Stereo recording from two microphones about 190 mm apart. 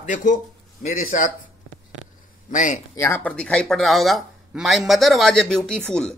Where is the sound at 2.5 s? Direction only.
40° left (ahead or behind).